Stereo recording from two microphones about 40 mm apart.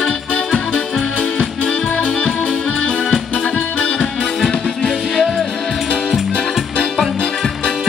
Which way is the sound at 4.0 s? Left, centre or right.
Centre.